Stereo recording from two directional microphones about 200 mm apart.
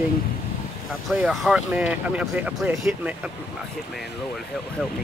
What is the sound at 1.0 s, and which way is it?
Speech, centre (ahead or behind).